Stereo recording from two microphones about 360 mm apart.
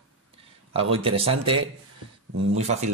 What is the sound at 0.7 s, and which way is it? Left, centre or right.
Speech, centre.